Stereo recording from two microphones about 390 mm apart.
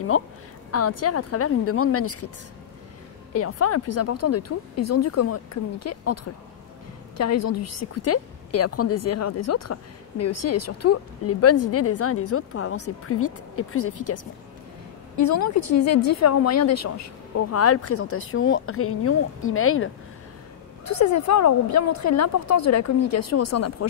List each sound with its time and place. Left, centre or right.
0.1 s a woman's voice: left
3.3 s a woman's voice: left
7.2 s a woman's voice: left
15.1 s a woman's voice: left
20.8 s speech: left